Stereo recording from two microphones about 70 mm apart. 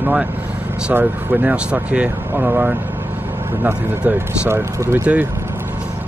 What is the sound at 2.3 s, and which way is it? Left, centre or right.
Speech, right.